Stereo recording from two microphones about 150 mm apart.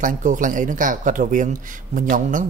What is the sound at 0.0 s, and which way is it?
Speech, 60° right (ahead or behind).